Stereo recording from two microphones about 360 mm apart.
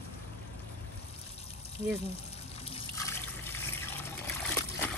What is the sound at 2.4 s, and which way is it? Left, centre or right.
Water, centre.